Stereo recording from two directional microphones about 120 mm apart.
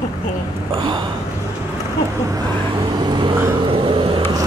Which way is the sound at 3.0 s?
40° right (ahead or behind).